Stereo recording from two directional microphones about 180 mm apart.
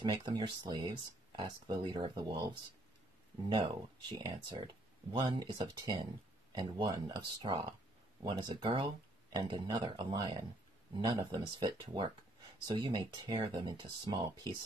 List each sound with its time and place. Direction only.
0.0 s speech: 25° right (ahead or behind)